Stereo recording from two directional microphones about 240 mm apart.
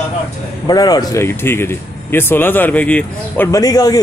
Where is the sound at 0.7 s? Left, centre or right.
Centre.